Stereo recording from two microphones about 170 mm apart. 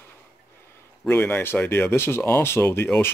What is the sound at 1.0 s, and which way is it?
Speech, 10° left (ahead or behind).